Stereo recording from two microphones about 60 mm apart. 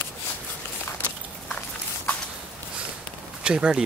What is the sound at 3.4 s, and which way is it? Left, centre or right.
Speech, centre.